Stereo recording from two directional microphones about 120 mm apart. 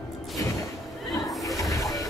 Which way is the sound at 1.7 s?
30° left (ahead or behind).